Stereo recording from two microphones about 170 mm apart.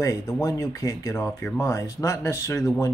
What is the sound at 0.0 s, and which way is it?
Speech, 20° left (ahead or behind).